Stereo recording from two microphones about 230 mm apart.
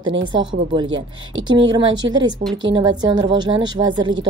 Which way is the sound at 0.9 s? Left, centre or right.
Right.